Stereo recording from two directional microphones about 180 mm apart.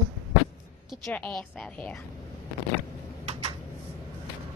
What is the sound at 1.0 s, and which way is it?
Speech, 5° left (ahead or behind).